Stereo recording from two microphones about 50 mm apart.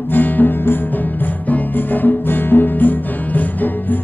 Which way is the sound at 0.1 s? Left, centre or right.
Left.